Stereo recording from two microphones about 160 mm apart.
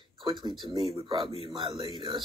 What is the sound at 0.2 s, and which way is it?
Speech, 30° right (ahead or behind).